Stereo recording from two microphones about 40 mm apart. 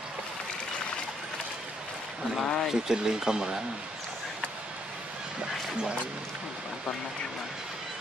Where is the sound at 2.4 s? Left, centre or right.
Centre.